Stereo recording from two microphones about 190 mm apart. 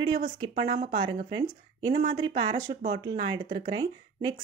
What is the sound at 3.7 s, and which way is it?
Speech, 20° right (ahead or behind).